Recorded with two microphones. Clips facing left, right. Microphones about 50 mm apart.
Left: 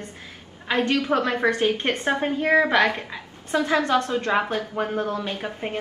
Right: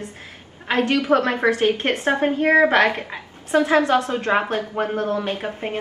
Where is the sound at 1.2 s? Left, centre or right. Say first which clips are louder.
Right 3 dB; right.